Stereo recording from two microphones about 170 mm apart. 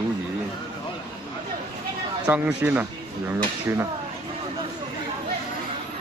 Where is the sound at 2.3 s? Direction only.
10° right (ahead or behind).